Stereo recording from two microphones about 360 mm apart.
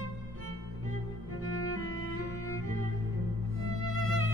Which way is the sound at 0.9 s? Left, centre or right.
Left.